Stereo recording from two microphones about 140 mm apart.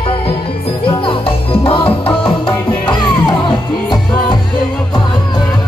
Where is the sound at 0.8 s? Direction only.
35° left (ahead or behind).